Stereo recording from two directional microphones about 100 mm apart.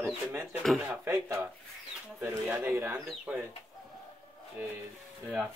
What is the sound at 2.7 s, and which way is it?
Speech, 25° right (ahead or behind).